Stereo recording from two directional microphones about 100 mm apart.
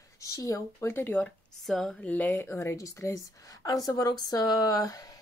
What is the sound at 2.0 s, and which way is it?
Speech, 15° left (ahead or behind).